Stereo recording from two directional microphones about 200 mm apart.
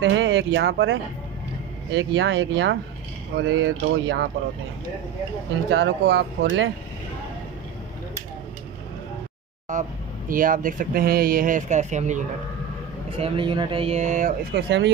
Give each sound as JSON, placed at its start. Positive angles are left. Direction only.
{"t": 0.0, "sound": "speech", "side_deg": -65}
{"t": 2.0, "sound": "speech", "side_deg": -65}
{"t": 5.7, "sound": "speech", "side_deg": -60}
{"t": 9.7, "sound": "speech", "side_deg": -40}
{"t": 13.2, "sound": "speech", "side_deg": -25}
{"t": 14.5, "sound": "speech", "side_deg": -60}